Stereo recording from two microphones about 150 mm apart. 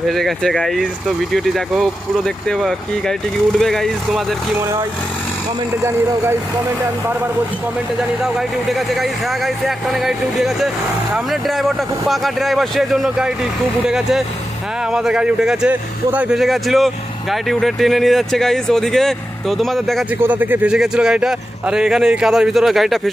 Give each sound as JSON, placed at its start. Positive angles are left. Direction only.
{"t": 0.1, "sound": "speech", "side_deg": 0}
{"t": 5.8, "sound": "speech", "side_deg": -20}
{"t": 8.4, "sound": "speech", "side_deg": 0}
{"t": 20.2, "sound": "speech", "side_deg": -10}